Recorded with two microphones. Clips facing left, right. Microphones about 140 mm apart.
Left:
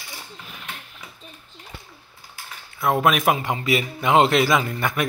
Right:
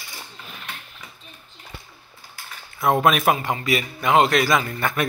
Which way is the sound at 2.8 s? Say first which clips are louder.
Right 1 dB; 5° left (ahead or behind).